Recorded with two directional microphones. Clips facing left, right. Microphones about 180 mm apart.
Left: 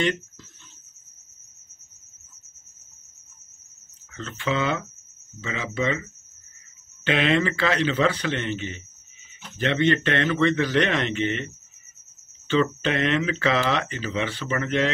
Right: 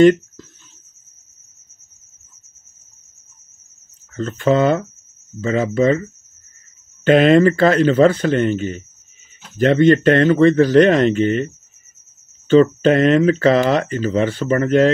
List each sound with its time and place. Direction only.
0.0 s speech: 45° right (ahead or behind)
4.1 s speech: 45° right (ahead or behind)
7.1 s a man's voice: 45° right (ahead or behind)